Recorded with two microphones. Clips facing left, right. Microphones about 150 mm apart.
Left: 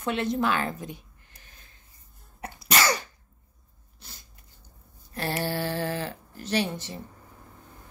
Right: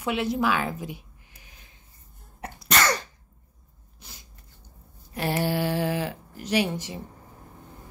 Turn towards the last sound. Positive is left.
turn(degrees=-10)  # may be behind; listen again after turning